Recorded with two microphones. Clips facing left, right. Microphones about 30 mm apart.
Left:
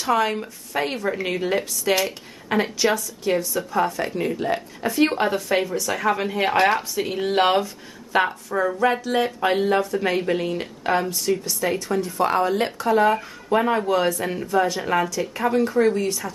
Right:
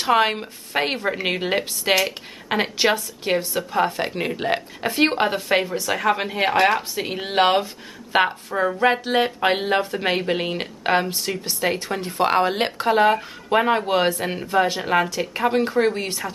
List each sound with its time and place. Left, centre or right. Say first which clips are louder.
0.0 s speech: right 2 dB; right
6.5 s a woman's voice: right 1 dB; centre
7.0 s speech: even; right